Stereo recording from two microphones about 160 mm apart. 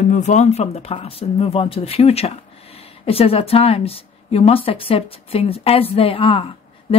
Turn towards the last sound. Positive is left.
turn(degrees=35)  # may be behind; listen again after turning